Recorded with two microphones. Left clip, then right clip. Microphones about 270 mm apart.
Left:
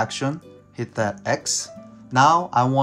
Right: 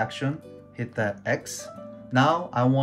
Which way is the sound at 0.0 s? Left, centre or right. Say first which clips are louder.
Left 4 dB; centre.